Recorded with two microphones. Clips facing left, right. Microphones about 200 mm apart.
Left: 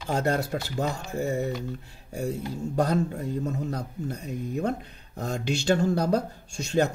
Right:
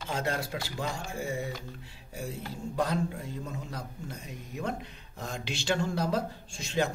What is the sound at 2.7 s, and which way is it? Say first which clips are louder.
A man's voice: left 5 dB; 45° left (ahead or behind).